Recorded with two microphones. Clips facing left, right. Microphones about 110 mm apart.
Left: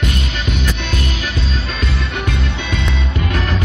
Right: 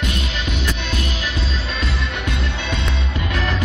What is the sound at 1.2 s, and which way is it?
Music, 40° left (ahead or behind).